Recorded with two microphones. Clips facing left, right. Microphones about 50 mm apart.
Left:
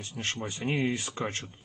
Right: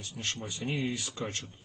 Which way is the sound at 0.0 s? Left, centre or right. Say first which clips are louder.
Left 3 dB; left.